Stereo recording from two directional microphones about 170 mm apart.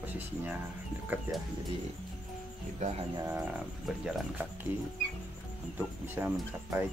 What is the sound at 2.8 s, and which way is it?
Speech, 45° right (ahead or behind).